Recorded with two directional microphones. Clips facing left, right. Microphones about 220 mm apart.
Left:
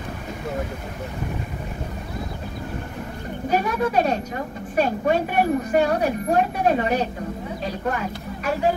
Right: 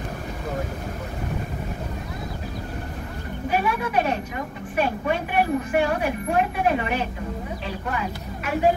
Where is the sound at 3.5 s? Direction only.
40° left (ahead or behind).